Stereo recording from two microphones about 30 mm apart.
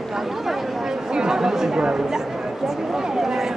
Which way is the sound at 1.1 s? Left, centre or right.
Right.